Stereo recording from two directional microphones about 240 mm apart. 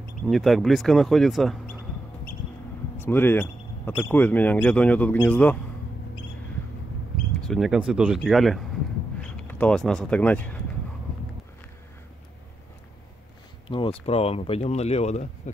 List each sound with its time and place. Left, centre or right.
0.0 s speech: centre
3.0 s speech: centre
7.3 s speech: centre
13.7 s speech: left